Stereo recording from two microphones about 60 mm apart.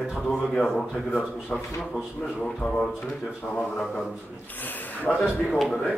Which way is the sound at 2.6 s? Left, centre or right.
Left.